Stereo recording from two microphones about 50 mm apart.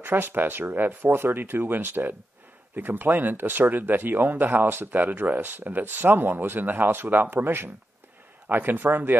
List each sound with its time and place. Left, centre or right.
0.0 s speech: right